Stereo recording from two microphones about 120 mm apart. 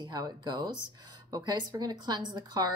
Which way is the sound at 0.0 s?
35° right (ahead or behind).